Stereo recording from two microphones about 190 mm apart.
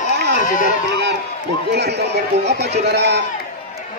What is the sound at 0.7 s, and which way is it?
Speech, 60° right (ahead or behind).